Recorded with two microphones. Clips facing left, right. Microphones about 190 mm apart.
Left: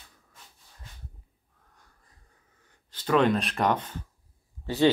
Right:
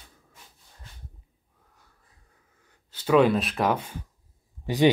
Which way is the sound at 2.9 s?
10° right (ahead or behind).